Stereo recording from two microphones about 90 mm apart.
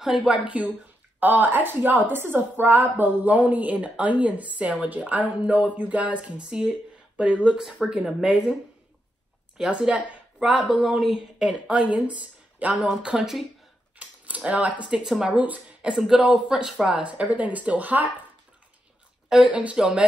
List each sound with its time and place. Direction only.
0.0 s a woman's voice: 5° right (ahead or behind)
1.2 s a woman's voice: 20° right (ahead or behind)
9.6 s a woman's voice: 10° right (ahead or behind)
10.7 s a woman's voice: centre (ahead or behind)
13.9 s a sound: 15° right (ahead or behind)
15.0 s a woman's voice: 5° right (ahead or behind)
19.2 s a sound: 5° right (ahead or behind)
19.5 s a woman's voice: 15° right (ahead or behind)